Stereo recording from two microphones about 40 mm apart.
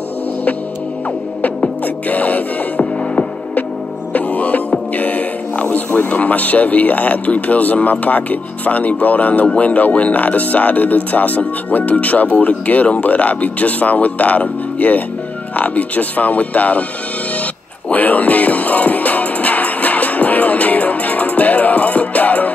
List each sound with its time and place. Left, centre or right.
1.4 s music: left
5.9 s speech: left
17.8 s music: left